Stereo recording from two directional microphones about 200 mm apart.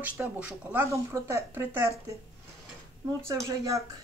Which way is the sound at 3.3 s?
15° right (ahead or behind).